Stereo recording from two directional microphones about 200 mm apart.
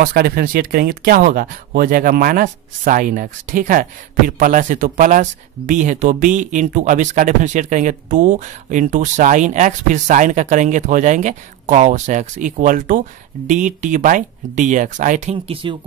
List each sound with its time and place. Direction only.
0.0 s speech: 45° right (ahead or behind); by 15.8 s 25° right (ahead or behind)